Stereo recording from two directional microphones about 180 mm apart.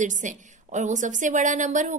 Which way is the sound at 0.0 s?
45° right (ahead or behind).